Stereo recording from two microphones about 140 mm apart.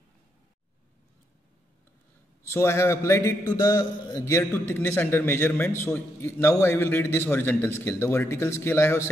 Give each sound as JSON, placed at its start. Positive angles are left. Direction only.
{"t": 2.4, "sound": "a man's voice", "side_deg": 20}